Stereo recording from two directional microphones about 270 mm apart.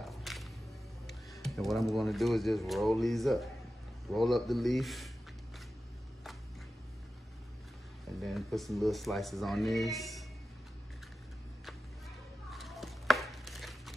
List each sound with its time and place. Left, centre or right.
0.0 s music: centre
1.4 s speech: centre
8.2 s speech: centre
12.4 s a sound: centre